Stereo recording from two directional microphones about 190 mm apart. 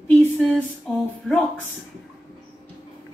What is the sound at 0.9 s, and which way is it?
Speech, centre (ahead or behind).